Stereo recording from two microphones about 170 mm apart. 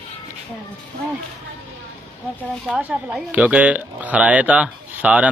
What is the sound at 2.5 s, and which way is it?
Speech, 5° right (ahead or behind).